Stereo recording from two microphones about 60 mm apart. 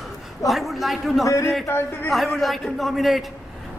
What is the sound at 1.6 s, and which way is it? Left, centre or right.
Speech, left.